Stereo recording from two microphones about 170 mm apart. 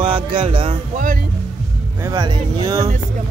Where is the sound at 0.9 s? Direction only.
50° right (ahead or behind).